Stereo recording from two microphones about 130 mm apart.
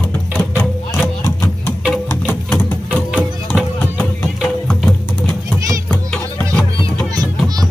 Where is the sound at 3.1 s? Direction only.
10° right (ahead or behind).